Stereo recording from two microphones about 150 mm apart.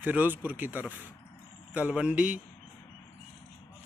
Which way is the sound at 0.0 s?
10° right (ahead or behind).